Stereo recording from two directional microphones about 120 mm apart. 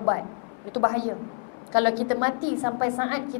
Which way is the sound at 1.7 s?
20° left (ahead or behind).